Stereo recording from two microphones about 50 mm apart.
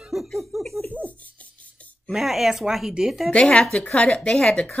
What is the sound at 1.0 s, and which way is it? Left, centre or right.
Dog, left.